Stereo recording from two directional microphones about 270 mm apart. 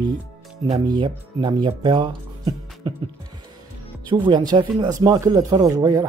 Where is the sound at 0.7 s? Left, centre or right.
Centre.